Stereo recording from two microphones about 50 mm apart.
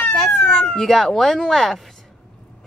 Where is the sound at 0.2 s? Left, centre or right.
Centre.